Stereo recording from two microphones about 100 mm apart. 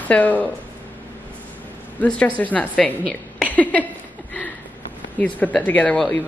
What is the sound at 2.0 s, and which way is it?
A woman's voice, 15° left (ahead or behind).